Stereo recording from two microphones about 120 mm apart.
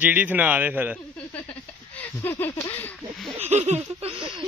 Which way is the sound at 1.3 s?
15° left (ahead or behind).